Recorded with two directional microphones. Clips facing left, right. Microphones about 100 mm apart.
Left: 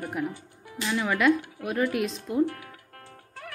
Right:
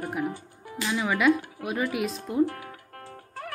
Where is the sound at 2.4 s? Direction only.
40° right (ahead or behind).